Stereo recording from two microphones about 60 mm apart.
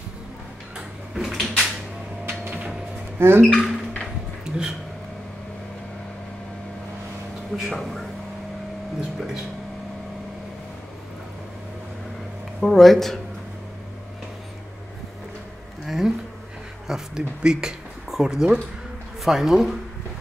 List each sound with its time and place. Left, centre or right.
0.7 s a sound: centre
2.2 s a sound: right
3.2 s speech: right
3.4 s speech: centre
4.5 s speech: centre
7.5 s speech: centre
12.5 s speech: centre
15.8 s speech: centre